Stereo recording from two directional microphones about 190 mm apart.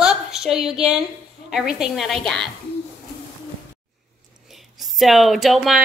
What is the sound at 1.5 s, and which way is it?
Speech, centre (ahead or behind).